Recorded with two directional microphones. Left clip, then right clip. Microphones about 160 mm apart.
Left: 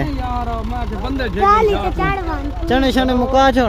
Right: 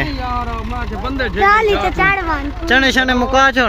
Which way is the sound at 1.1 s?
75° left (ahead or behind).